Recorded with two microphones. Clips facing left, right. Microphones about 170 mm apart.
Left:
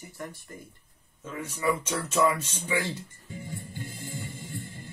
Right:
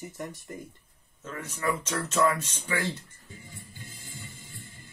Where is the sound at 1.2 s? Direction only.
10° left (ahead or behind).